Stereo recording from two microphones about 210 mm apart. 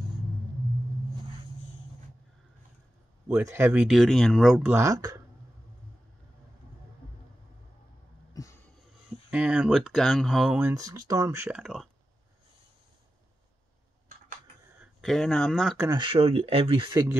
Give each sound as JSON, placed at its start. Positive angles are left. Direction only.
{"t": 3.3, "sound": "speech", "side_deg": -10}
{"t": 4.7, "sound": "speech", "side_deg": -15}
{"t": 8.3, "sound": "a sound", "side_deg": 15}
{"t": 9.3, "sound": "speech", "side_deg": -5}
{"t": 14.8, "sound": "speech", "side_deg": 0}
{"t": 15.9, "sound": "speech", "side_deg": -25}